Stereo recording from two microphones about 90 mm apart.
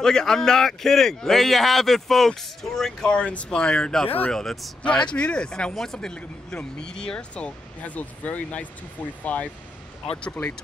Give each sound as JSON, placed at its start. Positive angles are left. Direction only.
{"t": 0.0, "sound": "a man's voice", "side_deg": 5}